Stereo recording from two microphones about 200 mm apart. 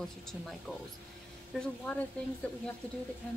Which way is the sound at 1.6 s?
5° left (ahead or behind).